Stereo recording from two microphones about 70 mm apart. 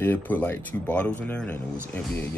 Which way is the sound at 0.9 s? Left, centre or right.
Centre.